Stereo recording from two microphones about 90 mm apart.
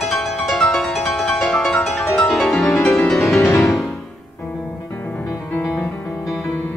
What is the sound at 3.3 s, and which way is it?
Music, 25° left (ahead or behind).